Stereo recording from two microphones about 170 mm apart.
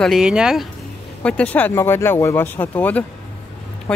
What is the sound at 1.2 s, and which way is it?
Speech, 5° left (ahead or behind).